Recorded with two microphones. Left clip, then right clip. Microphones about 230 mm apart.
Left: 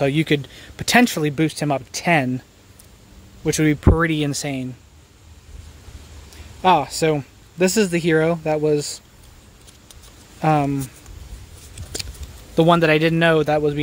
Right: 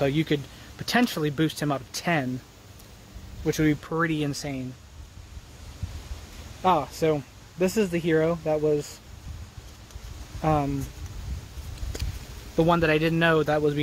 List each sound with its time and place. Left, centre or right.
0.0 s speech: left
3.4 s speech: left
6.6 s speech: left
10.4 s speech: left
12.5 s speech: left